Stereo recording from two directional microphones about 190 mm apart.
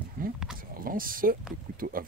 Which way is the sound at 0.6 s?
50° right (ahead or behind).